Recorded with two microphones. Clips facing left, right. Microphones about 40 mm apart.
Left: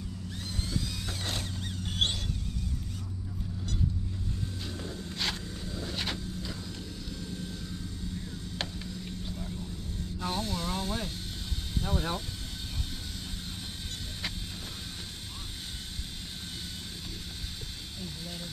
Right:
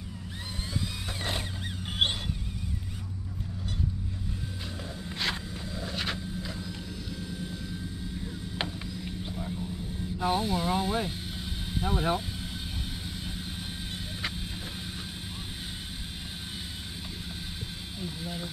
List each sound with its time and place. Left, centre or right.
1.9 s music: centre
5.9 s vehicle: centre
8.5 s vehicle: right
10.1 s speech: centre
18.0 s vehicle: centre